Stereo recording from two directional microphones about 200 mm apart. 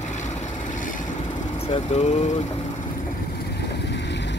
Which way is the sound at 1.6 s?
30° left (ahead or behind).